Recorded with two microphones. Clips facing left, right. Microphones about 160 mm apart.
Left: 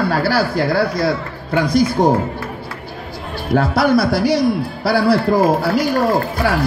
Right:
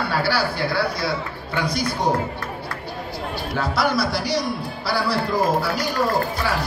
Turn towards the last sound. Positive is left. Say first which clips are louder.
# left 5 dB
turn(degrees=55)  # may be behind; listen again after turning